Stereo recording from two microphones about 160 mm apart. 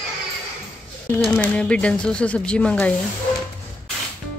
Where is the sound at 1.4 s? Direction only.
5° left (ahead or behind).